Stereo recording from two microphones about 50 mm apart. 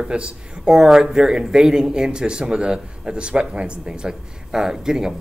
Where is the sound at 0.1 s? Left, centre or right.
Centre.